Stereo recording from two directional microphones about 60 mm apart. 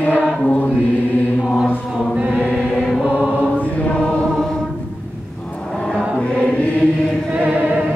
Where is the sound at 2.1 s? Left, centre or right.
Centre.